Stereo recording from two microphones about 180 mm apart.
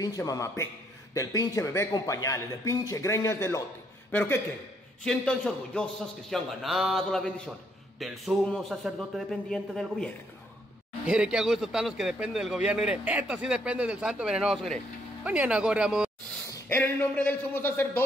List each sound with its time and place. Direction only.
0.0 s a man's voice: 20° left (ahead or behind); by 16.3 s 5° right (ahead or behind)
16.4 s speech: 15° left (ahead or behind)